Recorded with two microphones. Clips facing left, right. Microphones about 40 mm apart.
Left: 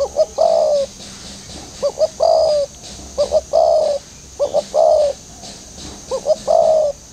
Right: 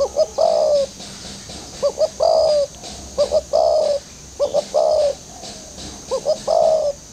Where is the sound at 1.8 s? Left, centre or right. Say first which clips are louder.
Left 2 dB; centre.